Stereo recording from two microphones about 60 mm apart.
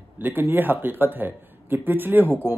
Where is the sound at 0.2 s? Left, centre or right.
Right.